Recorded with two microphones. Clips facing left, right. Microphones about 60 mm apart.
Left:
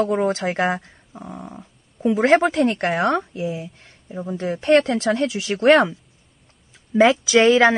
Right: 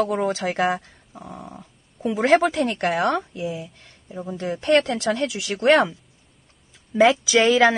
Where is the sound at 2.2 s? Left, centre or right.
Left.